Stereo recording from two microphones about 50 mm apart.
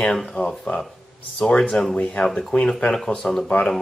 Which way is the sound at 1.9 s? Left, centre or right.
Left.